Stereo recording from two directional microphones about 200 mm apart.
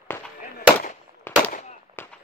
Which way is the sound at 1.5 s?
35° left (ahead or behind).